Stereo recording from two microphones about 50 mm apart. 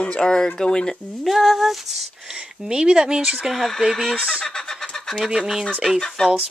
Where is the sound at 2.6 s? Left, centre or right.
Centre.